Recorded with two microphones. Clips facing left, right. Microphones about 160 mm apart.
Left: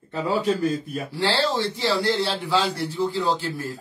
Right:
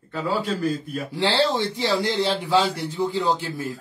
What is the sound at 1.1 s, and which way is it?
A man's voice, 20° right (ahead or behind).